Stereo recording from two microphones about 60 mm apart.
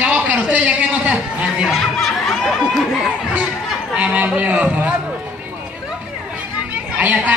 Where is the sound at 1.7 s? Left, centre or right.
Centre.